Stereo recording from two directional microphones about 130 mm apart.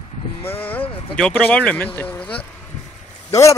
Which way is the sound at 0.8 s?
45° left (ahead or behind).